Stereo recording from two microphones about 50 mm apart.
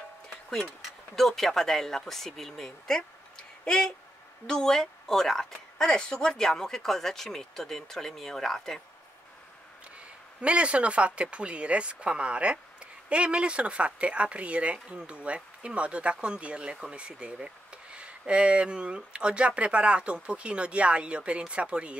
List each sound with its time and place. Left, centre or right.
1.1 s a woman's voice: centre
9.9 s speech: right